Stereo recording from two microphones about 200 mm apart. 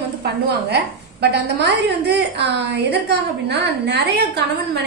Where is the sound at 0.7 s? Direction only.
55° right (ahead or behind).